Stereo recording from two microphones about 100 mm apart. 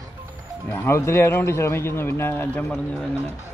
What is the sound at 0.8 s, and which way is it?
A man's voice, 25° left (ahead or behind).